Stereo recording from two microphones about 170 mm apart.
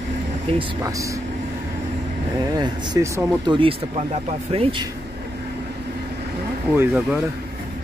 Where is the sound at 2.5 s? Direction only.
25° right (ahead or behind).